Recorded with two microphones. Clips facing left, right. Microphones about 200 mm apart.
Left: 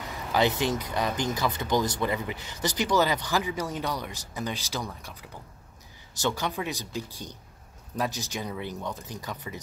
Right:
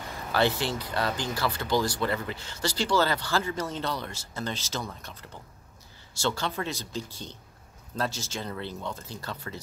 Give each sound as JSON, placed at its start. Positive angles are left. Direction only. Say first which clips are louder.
{"t": 0.3, "sound": "speech", "louder": "left 1 dB", "side_deg": 15}